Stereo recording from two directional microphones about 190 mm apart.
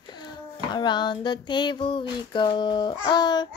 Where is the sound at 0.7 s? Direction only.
25° left (ahead or behind).